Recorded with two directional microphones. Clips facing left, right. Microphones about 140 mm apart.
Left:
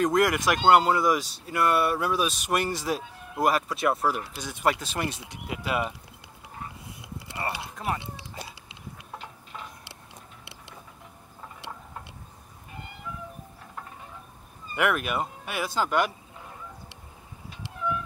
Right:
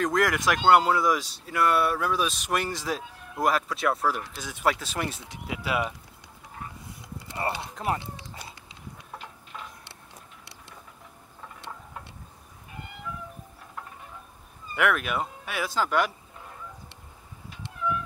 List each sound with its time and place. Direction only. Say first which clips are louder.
0.0 s speech: left 2 dB; 5° left (ahead or behind)
7.7 s speech: right 1 dB; 25° right (ahead or behind)
14.8 s speech: even; 5° left (ahead or behind)